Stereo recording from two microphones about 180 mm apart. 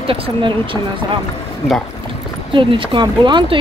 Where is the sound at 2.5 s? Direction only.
25° right (ahead or behind).